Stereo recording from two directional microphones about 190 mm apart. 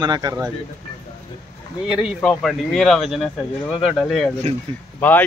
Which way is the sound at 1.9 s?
Centre (ahead or behind).